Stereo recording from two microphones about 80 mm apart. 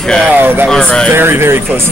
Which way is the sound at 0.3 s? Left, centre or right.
Right.